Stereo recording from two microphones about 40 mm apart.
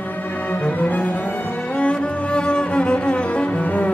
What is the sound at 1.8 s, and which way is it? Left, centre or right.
Cello, left.